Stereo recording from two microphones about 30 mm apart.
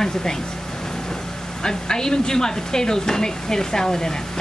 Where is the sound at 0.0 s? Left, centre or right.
Centre.